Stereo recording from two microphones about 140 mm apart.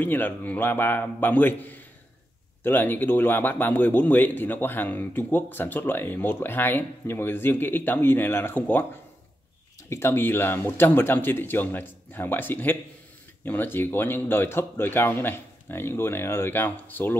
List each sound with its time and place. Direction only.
0.0 s speech: 15° left (ahead or behind)
9.8 s speech: 20° left (ahead or behind)